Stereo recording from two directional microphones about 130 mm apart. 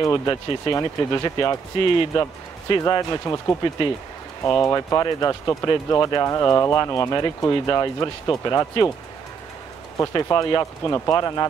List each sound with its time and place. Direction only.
0.0 s speech: 30° left (ahead or behind)
1.8 s speech: 40° left (ahead or behind)
2.8 s speech: 30° left (ahead or behind)
9.9 s speech: 30° left (ahead or behind)